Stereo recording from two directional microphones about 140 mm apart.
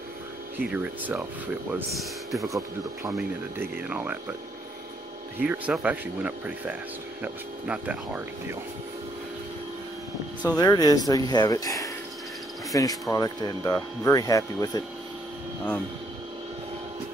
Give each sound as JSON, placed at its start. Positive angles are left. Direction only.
{"t": 0.6, "sound": "speech", "side_deg": -10}
{"t": 3.2, "sound": "speech", "side_deg": -15}
{"t": 5.4, "sound": "speech", "side_deg": -5}
{"t": 10.5, "sound": "speech", "side_deg": 30}